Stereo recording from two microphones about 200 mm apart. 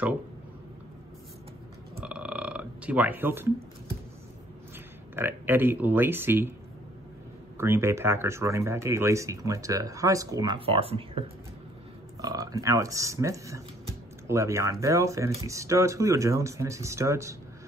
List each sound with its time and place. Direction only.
2.0 s burping: 5° right (ahead or behind)
5.1 s speech: 10° right (ahead or behind)
7.5 s speech: 15° right (ahead or behind); by 11.2 s 30° right (ahead or behind)
12.2 s speech: 15° right (ahead or behind)